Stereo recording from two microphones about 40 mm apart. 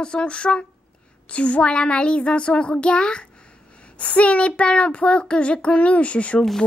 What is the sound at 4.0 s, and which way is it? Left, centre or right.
Speech, left.